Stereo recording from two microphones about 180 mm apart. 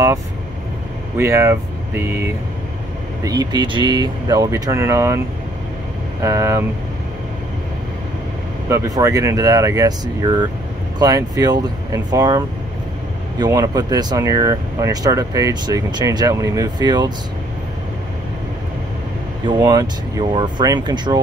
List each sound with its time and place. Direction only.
1.1 s speech: 15° right (ahead or behind)
6.2 s speech: 15° right (ahead or behind)
8.6 s speech: 15° right (ahead or behind)
19.4 s speech: 20° right (ahead or behind)